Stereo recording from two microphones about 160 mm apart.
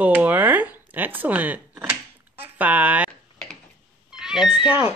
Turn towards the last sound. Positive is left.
turn(degrees=-5)  # may be behind; listen again after turning